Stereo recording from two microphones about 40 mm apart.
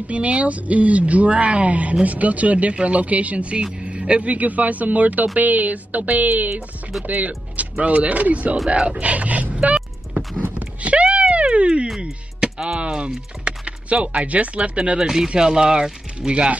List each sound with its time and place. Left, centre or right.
0.1 s speech: right
10.6 s a sound: right
12.0 s speech: right